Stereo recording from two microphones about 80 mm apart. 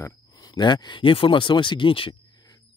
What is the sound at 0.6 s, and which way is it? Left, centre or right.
Speech, left.